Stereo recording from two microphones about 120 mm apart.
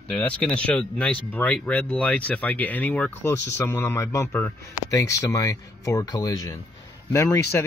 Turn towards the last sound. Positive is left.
turn(degrees=20)  # may be behind; listen again after turning